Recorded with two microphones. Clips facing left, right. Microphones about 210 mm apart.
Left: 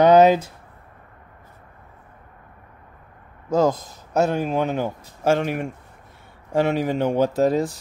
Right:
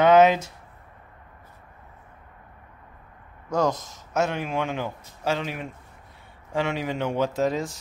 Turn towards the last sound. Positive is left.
turn(degrees=35)  # may be behind; listen again after turning